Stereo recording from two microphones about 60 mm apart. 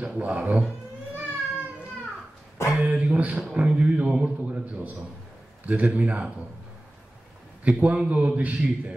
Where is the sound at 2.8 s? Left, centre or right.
Right.